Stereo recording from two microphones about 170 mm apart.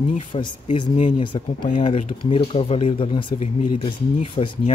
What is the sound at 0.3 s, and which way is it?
Speech, 35° left (ahead or behind).